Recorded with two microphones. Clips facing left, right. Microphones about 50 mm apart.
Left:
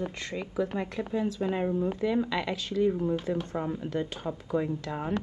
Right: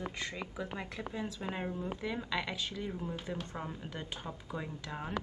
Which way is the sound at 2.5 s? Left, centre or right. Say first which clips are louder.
Left 9 dB; centre.